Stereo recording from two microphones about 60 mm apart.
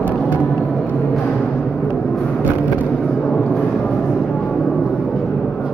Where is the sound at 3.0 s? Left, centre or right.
Centre.